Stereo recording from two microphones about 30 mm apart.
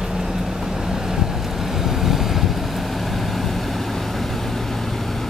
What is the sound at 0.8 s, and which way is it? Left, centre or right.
Boat, centre.